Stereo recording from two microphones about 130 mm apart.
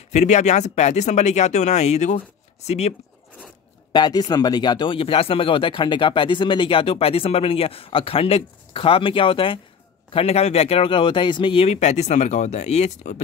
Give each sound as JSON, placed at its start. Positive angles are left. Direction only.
{"t": 0.1, "sound": "speech", "side_deg": 65}
{"t": 3.9, "sound": "speech", "side_deg": 35}
{"t": 10.1, "sound": "speech", "side_deg": 50}